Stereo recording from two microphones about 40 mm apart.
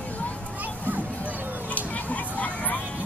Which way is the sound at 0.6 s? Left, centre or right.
Right.